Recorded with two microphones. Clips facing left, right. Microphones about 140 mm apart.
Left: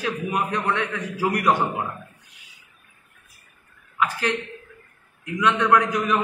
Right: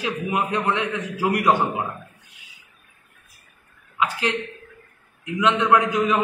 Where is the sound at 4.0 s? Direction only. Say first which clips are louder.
Even; 20° right (ahead or behind).